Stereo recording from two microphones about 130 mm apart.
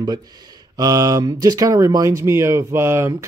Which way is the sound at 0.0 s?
30° right (ahead or behind).